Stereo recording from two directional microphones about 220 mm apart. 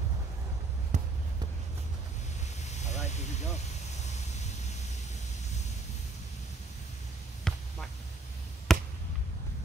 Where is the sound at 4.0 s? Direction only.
30° left (ahead or behind).